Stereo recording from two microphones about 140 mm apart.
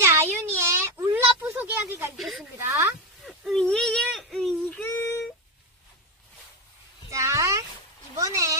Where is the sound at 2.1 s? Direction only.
Centre (ahead or behind); by 5.2 s 15° left (ahead or behind).